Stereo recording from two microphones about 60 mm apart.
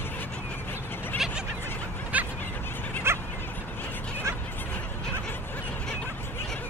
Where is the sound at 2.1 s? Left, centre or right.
Right.